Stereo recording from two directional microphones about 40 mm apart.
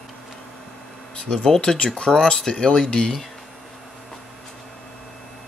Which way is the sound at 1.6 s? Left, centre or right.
Left.